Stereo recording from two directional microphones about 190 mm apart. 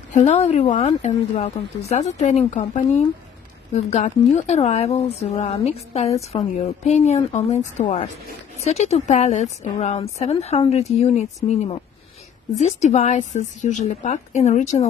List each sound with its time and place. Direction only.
0.1 s a woman's voice: 40° left (ahead or behind)